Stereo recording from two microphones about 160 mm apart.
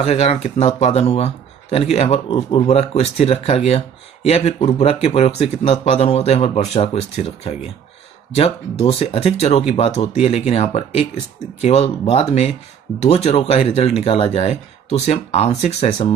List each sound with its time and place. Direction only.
0.0 s speech: 40° left (ahead or behind)